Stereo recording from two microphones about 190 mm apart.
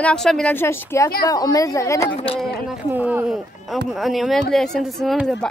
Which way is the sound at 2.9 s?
10° right (ahead or behind).